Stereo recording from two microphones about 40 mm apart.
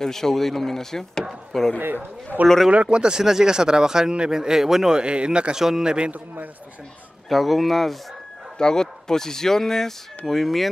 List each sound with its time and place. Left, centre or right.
0.0 s speech: centre
2.7 s speech: right; by 4.9 s centre
4.9 s speech: right
5.6 s speech: centre
7.2 s speech: centre
8.5 s speech: centre